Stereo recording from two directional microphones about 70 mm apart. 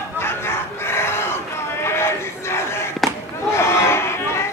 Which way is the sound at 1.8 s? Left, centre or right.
Left.